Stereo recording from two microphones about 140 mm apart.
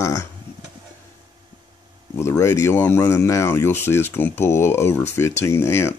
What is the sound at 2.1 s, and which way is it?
Speech, 20° left (ahead or behind).